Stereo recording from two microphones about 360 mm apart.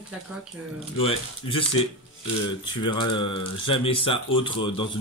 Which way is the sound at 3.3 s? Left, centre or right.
Centre.